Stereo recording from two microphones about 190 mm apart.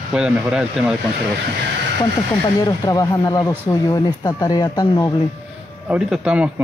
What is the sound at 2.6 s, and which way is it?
Speech, 20° left (ahead or behind).